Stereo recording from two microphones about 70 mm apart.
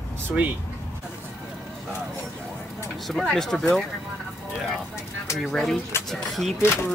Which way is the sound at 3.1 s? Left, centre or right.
Centre.